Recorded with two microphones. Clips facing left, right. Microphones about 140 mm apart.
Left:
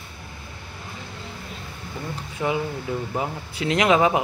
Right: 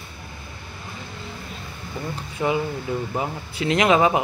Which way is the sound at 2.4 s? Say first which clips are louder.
Right 2 dB; 15° right (ahead or behind).